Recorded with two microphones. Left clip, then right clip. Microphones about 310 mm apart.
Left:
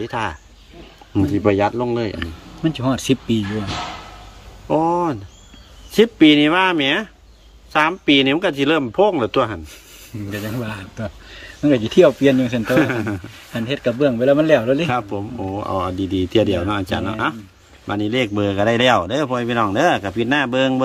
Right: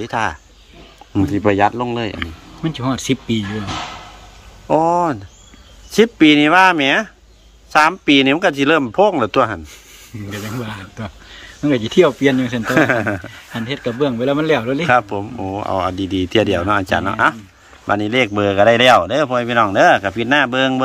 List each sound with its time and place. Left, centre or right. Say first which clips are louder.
0.0 s speech: right 4 dB; centre
4.6 s speech: right 3 dB; centre